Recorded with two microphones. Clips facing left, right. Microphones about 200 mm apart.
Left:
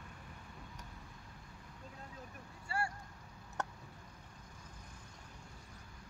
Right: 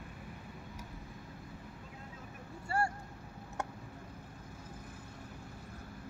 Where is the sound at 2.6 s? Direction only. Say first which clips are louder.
Right 6 dB; 45° right (ahead or behind).